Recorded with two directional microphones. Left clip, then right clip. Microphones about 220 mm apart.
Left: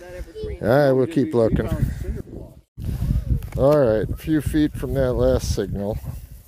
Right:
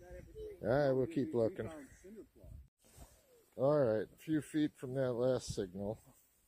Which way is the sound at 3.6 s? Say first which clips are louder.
Left 15 dB; centre (ahead or behind).